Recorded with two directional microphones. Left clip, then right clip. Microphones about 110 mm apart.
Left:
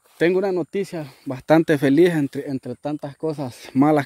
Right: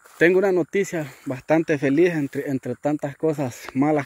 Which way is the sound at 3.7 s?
90° left.